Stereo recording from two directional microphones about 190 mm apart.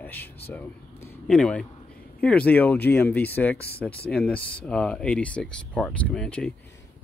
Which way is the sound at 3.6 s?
55° left (ahead or behind).